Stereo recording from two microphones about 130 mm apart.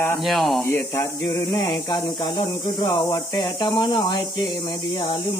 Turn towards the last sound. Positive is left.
turn(degrees=35)  # may be behind; listen again after turning